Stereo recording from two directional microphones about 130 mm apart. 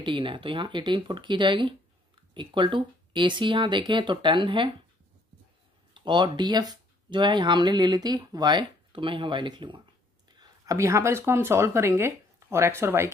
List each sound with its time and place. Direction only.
0.0 s speech: 40° right (ahead or behind)
5.9 s speech: 35° right (ahead or behind)
10.4 s speech: 25° right (ahead or behind)